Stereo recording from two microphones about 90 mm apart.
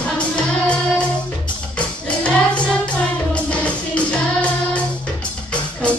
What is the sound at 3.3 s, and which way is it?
Music, 15° left (ahead or behind).